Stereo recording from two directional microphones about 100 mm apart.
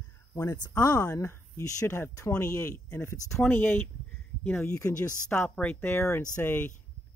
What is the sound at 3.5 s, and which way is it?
Speech, 20° left (ahead or behind).